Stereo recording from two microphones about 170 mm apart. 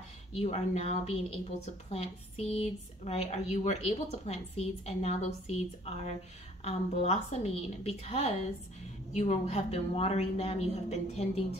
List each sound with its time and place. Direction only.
0.3 s speech: 35° left (ahead or behind)